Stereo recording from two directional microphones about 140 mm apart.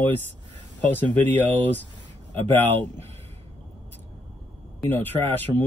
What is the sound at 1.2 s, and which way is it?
Speech, 10° left (ahead or behind).